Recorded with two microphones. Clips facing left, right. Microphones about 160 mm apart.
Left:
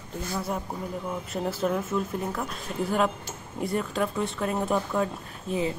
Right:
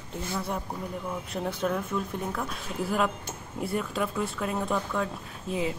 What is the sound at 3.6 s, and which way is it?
Speech, centre (ahead or behind).